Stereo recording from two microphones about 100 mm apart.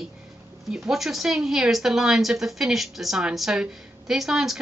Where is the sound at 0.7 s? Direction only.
5° right (ahead or behind).